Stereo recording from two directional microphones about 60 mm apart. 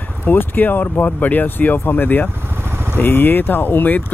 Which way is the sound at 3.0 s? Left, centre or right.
Left.